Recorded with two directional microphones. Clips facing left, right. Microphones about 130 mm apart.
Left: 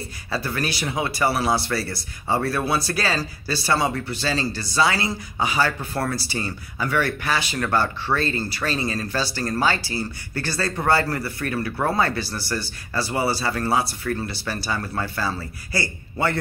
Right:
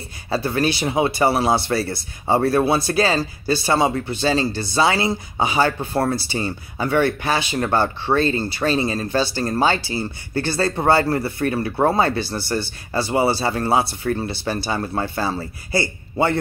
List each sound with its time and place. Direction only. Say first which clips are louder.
0.3 s speech: right 6 dB; 25° right (ahead or behind)